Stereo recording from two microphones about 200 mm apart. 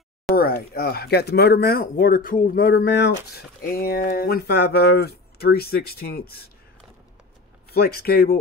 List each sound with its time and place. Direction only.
0.4 s speech: 50° left (ahead or behind)
7.7 s speech: 50° left (ahead or behind)